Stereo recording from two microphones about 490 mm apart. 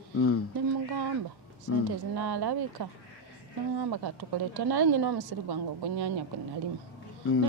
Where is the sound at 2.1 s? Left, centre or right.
Right.